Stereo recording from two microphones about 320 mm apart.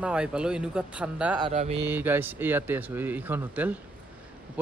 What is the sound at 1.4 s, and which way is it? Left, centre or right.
Mantra, centre.